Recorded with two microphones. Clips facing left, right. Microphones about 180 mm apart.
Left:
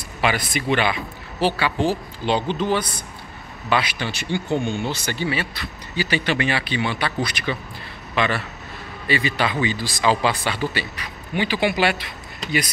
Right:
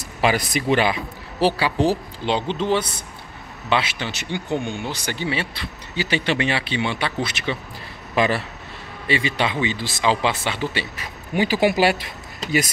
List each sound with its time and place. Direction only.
0.2 s speech: 40° right (ahead or behind)
2.2 s speech: 20° right (ahead or behind)
8.1 s a man's voice: 35° right (ahead or behind)
11.3 s speech: 40° right (ahead or behind)